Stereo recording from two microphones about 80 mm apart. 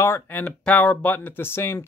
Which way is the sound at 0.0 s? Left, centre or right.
Left.